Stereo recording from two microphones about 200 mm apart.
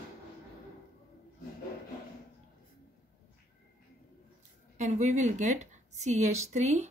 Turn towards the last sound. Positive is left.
turn(degrees=-35)  # may be behind; listen again after turning